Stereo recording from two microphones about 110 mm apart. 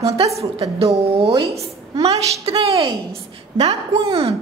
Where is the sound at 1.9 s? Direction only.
35° right (ahead or behind).